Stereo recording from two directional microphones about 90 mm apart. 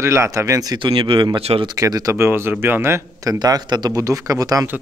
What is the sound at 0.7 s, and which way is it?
Speech, 65° right (ahead or behind).